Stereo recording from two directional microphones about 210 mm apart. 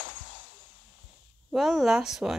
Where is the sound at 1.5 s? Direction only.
Centre (ahead or behind).